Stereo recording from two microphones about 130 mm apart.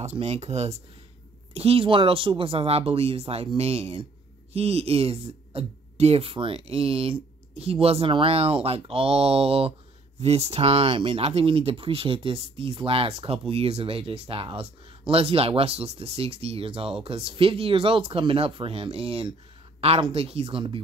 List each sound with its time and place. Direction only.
0.0 s speech: 55° right (ahead or behind)
20.4 s speech: 40° right (ahead or behind)